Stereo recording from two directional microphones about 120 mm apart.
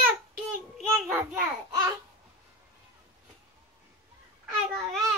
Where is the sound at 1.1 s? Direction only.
20° right (ahead or behind).